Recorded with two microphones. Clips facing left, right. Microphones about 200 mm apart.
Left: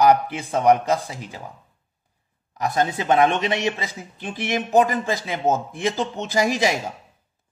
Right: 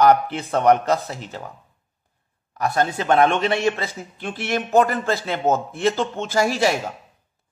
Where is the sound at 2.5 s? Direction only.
20° left (ahead or behind).